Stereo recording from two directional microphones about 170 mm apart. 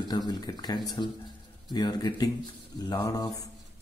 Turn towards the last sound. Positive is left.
turn(degrees=20)  # may be behind; listen again after turning